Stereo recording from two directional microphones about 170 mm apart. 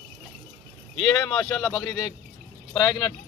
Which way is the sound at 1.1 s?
5° left (ahead or behind).